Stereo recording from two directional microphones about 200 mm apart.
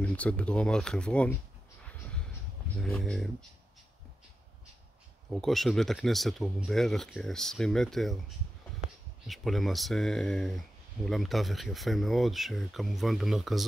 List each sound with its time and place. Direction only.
0.0 s speech: 5° left (ahead or behind)
2.8 s speech: centre (ahead or behind)
5.3 s speech: centre (ahead or behind)
9.3 s speech: centre (ahead or behind)